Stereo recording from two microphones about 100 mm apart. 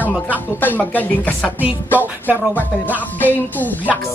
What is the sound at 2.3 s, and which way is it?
Music, 15° right (ahead or behind).